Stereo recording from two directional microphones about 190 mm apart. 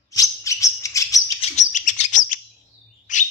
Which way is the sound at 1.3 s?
40° left (ahead or behind).